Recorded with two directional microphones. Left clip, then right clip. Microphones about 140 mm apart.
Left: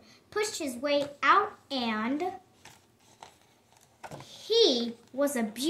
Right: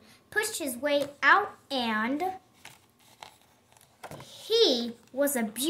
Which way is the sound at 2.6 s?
55° right (ahead or behind).